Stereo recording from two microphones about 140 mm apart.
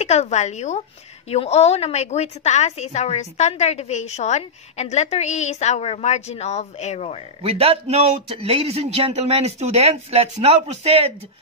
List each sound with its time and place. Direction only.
0.0 s a woman's voice: 50° left (ahead or behind)
7.4 s a man's voice: 45° right (ahead or behind)